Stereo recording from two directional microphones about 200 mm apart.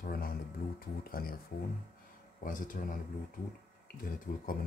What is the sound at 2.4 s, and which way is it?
Speech, 40° left (ahead or behind).